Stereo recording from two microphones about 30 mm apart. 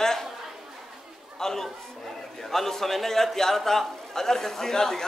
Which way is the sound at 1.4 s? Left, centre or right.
Centre.